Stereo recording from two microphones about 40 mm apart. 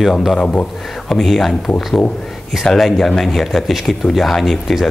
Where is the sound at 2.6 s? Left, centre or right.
Centre.